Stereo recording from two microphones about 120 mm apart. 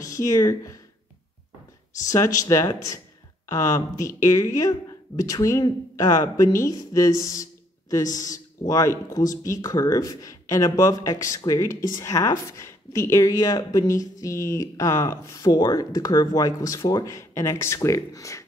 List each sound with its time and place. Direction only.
0.0 s speech: 25° left (ahead or behind)
2.0 s speech: 30° left (ahead or behind)